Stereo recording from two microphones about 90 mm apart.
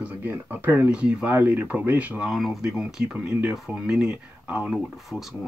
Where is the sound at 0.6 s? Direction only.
20° right (ahead or behind).